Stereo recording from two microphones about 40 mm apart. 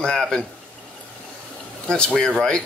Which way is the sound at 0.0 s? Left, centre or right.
Left.